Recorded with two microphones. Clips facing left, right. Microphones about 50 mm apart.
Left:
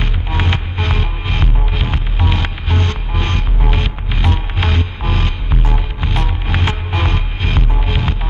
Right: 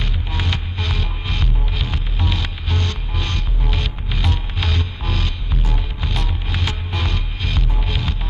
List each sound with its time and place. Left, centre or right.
0.0 s music: left